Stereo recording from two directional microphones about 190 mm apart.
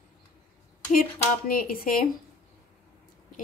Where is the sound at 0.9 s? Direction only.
50° left (ahead or behind).